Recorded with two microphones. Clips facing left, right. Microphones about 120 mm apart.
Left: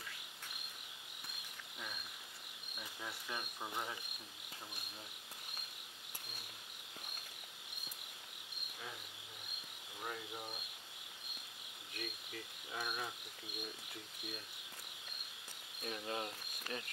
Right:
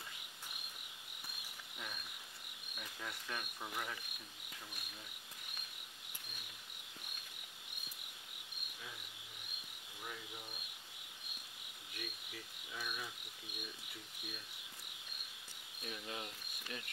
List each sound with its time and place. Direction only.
2.8 s cricket: 10° left (ahead or behind)
10.0 s speech: 45° left (ahead or behind)
11.9 s insect: 45° left (ahead or behind)
15.8 s cricket: 40° left (ahead or behind)